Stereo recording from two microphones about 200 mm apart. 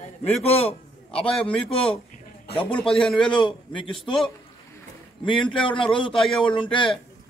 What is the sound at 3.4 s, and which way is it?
Speech, 25° left (ahead or behind).